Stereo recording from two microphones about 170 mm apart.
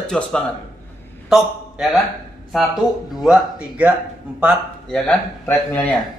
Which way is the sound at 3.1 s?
5° right (ahead or behind).